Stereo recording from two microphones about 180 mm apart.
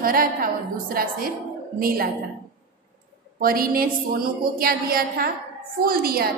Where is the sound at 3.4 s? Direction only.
55° right (ahead or behind).